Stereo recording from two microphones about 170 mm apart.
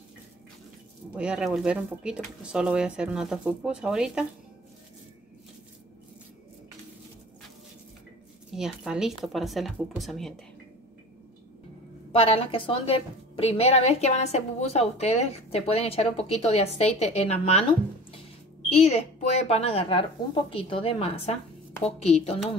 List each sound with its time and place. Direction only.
1.1 s speech: 5° right (ahead or behind)
8.5 s speech: 5° right (ahead or behind)
12.1 s a woman's voice: 35° left (ahead or behind)
18.7 s a woman's voice: 35° left (ahead or behind)